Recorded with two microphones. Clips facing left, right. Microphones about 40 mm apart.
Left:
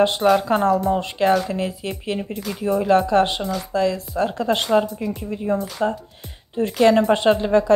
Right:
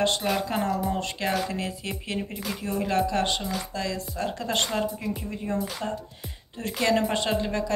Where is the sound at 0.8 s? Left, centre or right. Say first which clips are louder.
Left 9 dB; left.